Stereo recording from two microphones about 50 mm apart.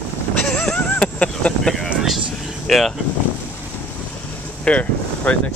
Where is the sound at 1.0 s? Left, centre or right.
Left.